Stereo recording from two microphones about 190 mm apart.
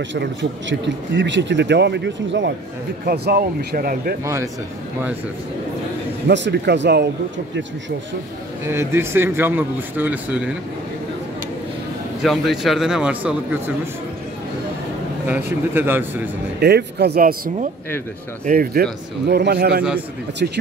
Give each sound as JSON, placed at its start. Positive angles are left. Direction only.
{"t": 0.1, "sound": "speech", "side_deg": -75}
{"t": 3.1, "sound": "speech", "side_deg": -55}
{"t": 4.2, "sound": "a man's voice", "side_deg": -15}
{"t": 6.2, "sound": "a man's voice", "side_deg": -65}
{"t": 8.6, "sound": "a man's voice", "side_deg": -15}
{"t": 12.2, "sound": "a man's voice", "side_deg": 0}
{"t": 15.2, "sound": "a man's voice", "side_deg": -10}
{"t": 16.6, "sound": "a man's voice", "side_deg": -60}